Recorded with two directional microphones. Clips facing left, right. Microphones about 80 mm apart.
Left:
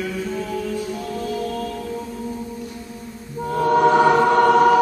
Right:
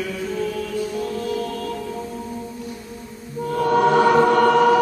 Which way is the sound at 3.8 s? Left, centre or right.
Centre.